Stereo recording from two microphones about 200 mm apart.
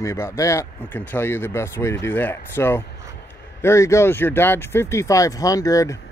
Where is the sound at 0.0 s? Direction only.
15° left (ahead or behind).